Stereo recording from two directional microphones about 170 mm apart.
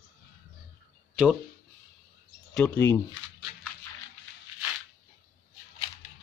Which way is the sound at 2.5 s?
5° left (ahead or behind).